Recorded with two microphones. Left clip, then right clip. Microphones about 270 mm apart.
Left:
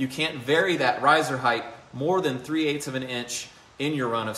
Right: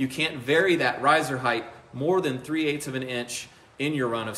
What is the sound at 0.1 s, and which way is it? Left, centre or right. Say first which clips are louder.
A man's voice: even; centre.